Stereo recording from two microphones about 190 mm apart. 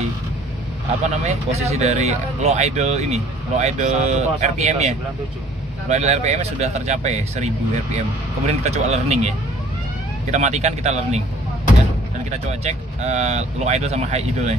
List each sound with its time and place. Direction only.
1.0 s speech: 35° right (ahead or behind)
10.3 s speech: 35° right (ahead or behind)
12.3 s speech: 35° right (ahead or behind)